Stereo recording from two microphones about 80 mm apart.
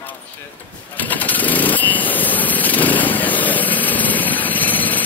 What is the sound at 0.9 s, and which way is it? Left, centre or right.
Lawn mower, left.